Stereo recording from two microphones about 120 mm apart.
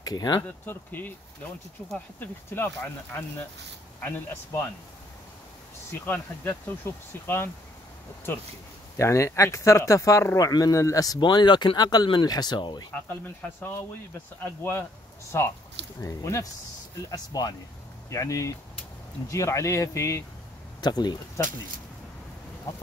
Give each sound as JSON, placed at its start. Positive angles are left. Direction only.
{"t": 0.0, "sound": "speech", "side_deg": 35}
{"t": 0.7, "sound": "speech", "side_deg": 15}
{"t": 2.1, "sound": "speech", "side_deg": 20}
{"t": 4.0, "sound": "speech", "side_deg": 20}
{"t": 5.9, "sound": "speech", "side_deg": 15}
{"t": 8.9, "sound": "speech", "side_deg": 25}
{"t": 12.9, "sound": "speech", "side_deg": 15}
{"t": 20.8, "sound": "speech", "side_deg": 35}